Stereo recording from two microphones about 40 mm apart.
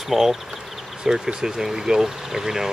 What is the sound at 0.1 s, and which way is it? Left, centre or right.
Speech, centre.